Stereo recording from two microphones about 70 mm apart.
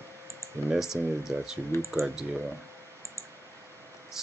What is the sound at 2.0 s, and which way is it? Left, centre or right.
Speech, centre.